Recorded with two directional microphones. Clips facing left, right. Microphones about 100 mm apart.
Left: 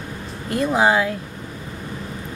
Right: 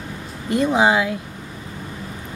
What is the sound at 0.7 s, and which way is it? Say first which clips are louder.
Speech: left 1 dB; 20° right (ahead or behind).